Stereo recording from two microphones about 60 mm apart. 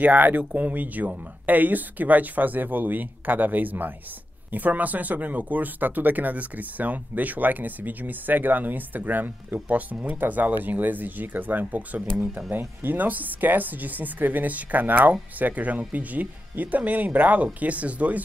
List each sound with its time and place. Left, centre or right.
0.0 s speech: right